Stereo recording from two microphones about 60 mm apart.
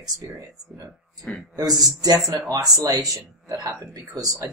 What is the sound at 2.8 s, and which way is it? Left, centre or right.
Speech, right.